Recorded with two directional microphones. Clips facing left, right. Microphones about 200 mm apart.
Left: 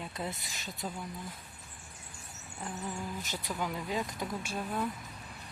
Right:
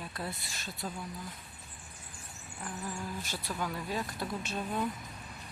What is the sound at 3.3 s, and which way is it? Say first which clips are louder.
Speech: left 1 dB; 15° left (ahead or behind).